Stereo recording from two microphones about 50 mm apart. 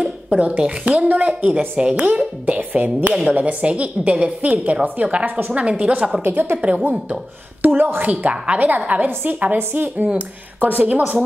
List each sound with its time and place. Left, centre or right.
0.0 s a sound: right
0.6 s a woman's voice: right
1.8 s a woman's voice: right
5.5 s a woman's voice: right
6.2 s a woman's voice: right
6.6 s a woman's voice: right